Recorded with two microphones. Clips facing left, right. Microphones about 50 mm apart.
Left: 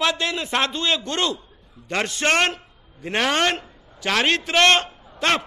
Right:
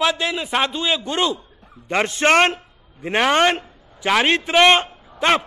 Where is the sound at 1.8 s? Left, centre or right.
Right.